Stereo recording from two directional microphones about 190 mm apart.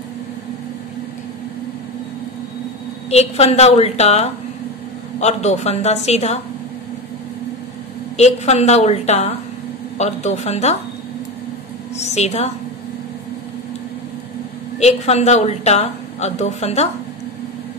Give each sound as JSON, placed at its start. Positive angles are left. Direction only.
{"t": 3.1, "sound": "a woman's voice", "side_deg": 35}
{"t": 8.2, "sound": "a woman's voice", "side_deg": 35}
{"t": 12.0, "sound": "a woman's voice", "side_deg": 35}
{"t": 14.8, "sound": "a woman's voice", "side_deg": 35}